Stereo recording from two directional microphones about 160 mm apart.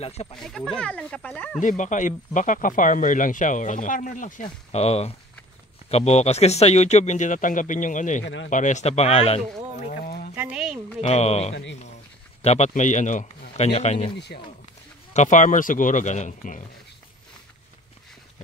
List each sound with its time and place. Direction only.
0.0 s speech: 40° left (ahead or behind)
0.4 s speech: centre (ahead or behind)
1.6 s a man's voice: 50° left (ahead or behind)
10.0 s a sound: 65° left (ahead or behind)
10.3 s speech: 10° right (ahead or behind)
11.0 s a man's voice: 40° left (ahead or behind)
14.1 s speech: 90° left
15.1 s a man's voice: 50° left (ahead or behind)